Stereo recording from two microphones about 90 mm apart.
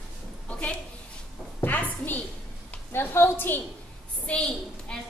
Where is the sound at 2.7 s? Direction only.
25° left (ahead or behind).